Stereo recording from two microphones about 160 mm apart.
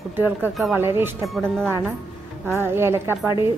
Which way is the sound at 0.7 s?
15° right (ahead or behind).